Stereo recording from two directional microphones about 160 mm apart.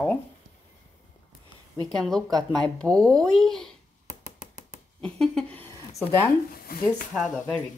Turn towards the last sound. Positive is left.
turn(degrees=10)  # may be behind; listen again after turning